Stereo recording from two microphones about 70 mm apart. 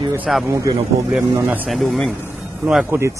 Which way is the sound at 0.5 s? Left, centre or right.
Right.